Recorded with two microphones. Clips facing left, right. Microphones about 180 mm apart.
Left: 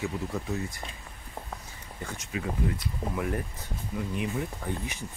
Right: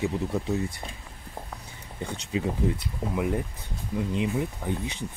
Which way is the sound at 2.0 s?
20° right (ahead or behind).